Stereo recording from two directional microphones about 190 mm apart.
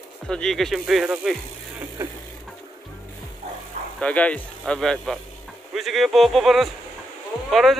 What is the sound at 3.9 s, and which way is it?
Speech, 5° left (ahead or behind).